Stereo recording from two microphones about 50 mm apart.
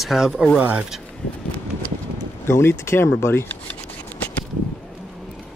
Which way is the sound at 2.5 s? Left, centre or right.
Left.